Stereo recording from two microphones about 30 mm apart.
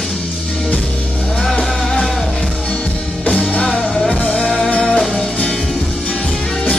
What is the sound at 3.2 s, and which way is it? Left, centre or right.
Music, left.